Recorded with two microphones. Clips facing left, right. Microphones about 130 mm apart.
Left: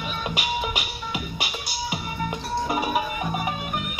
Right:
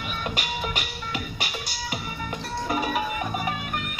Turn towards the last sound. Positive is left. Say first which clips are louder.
# left 1 dB
turn(degrees=10)  # may be behind; listen again after turning